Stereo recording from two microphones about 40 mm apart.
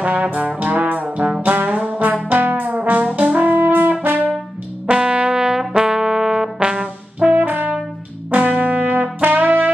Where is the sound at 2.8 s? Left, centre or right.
Right.